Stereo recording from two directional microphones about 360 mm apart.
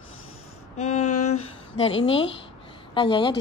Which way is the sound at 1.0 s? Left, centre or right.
Left.